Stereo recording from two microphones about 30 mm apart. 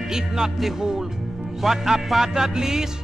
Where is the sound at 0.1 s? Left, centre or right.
Centre.